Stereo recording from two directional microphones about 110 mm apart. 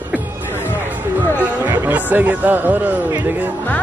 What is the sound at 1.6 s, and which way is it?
Speech, 15° right (ahead or behind).